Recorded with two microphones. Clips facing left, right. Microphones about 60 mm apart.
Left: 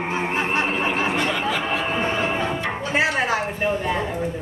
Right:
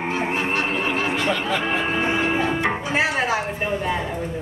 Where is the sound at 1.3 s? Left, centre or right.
Centre.